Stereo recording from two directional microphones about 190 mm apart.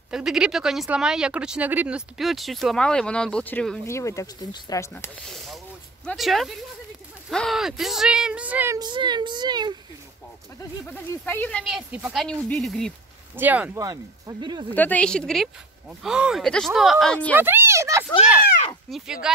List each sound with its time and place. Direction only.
0.1 s speech: 5° right (ahead or behind); by 5.1 s 15° left (ahead or behind)
6.0 s speech: centre (ahead or behind)
8.7 s speech: 25° right (ahead or behind)
10.9 s speech: 10° left (ahead or behind)
13.4 s speech: 10° right (ahead or behind)
14.7 s speech: 10° left (ahead or behind)
17.4 s speech: 10° right (ahead or behind)
18.9 s speech: centre (ahead or behind)